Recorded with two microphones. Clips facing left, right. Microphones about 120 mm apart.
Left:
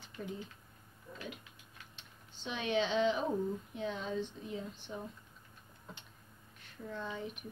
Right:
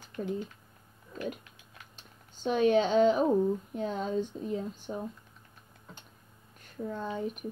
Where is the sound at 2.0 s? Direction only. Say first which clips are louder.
Right 12 dB; 45° right (ahead or behind).